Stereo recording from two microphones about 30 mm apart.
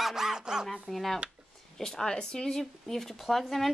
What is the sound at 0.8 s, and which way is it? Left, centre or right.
Speech, centre.